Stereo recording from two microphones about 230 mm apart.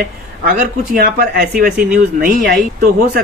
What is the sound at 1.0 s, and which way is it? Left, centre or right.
Speech, right.